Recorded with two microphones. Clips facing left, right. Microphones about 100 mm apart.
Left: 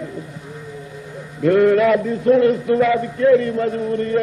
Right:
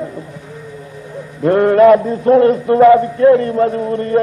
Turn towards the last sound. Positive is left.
turn(degrees=-35)  # may be behind; listen again after turning